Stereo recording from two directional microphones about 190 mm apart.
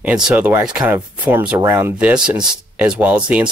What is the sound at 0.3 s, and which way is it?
Speech, 10° right (ahead or behind).